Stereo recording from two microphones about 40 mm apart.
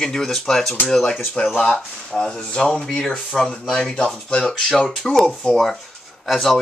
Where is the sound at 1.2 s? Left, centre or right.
Left.